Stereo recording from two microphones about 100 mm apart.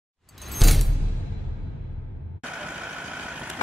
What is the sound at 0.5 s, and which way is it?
Music, centre (ahead or behind).